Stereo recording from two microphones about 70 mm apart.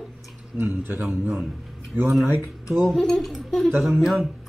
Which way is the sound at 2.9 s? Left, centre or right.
Centre.